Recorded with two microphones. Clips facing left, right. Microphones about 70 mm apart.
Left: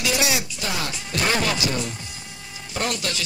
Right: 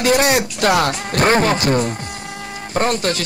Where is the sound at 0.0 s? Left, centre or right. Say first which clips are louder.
Right 9 dB; right.